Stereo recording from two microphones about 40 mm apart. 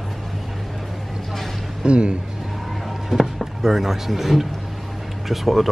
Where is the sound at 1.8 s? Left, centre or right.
Right.